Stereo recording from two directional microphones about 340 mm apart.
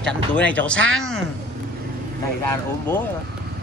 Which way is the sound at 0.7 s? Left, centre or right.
Right.